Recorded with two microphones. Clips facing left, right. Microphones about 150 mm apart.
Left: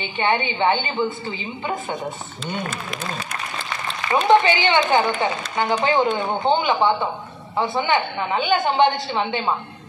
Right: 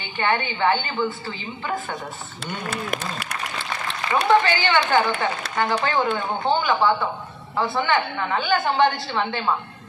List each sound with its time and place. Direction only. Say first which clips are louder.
0.0 s a woman's voice: left 2 dB; 20° left (ahead or behind)
2.4 s speech: left 1 dB; 65° right (ahead or behind)
4.3 s a woman's voice: left 3 dB; 20° left (ahead or behind)